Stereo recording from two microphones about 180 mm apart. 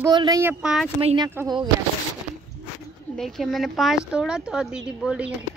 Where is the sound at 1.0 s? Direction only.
25° right (ahead or behind).